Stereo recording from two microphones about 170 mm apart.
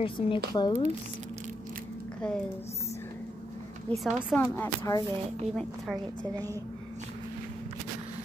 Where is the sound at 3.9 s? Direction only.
5° left (ahead or behind).